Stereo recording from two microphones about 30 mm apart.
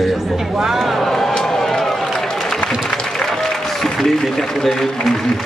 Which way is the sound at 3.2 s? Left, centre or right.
Centre.